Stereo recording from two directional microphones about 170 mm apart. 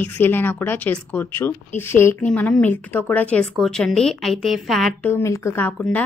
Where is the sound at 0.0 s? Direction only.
10° left (ahead or behind).